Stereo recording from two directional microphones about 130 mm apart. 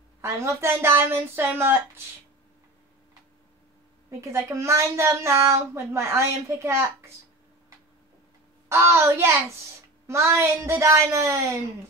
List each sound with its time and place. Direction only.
0.2 s a woman's voice: 20° right (ahead or behind)
4.2 s a woman's voice: 25° right (ahead or behind)
8.6 s a woman's voice: 20° right (ahead or behind)